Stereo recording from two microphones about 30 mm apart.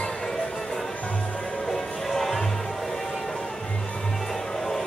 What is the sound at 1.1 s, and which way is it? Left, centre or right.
Music, left.